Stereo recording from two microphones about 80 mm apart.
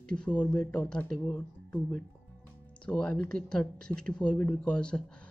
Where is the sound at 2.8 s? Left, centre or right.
Centre.